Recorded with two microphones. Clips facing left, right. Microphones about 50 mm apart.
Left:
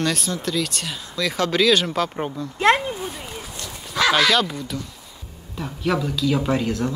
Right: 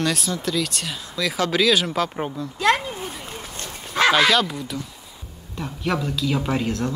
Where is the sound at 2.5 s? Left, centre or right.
Left.